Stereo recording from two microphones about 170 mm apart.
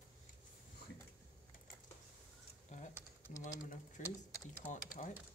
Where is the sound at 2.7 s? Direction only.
45° left (ahead or behind).